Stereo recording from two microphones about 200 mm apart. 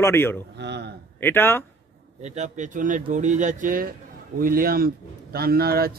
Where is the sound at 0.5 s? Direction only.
60° right (ahead or behind).